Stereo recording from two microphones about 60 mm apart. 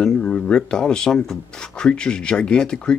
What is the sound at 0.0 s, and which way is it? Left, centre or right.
Speech, centre.